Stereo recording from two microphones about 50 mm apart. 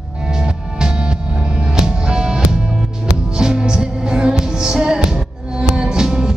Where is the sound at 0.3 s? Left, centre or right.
Centre.